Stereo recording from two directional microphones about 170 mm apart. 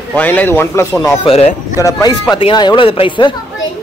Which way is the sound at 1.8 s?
20° left (ahead or behind).